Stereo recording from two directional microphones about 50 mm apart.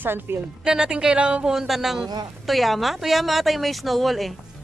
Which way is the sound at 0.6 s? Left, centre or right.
Centre.